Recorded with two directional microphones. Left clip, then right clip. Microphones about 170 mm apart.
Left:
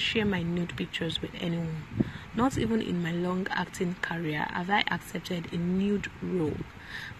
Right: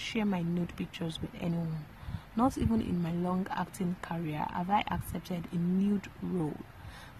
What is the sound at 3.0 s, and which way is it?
Speech, 5° right (ahead or behind).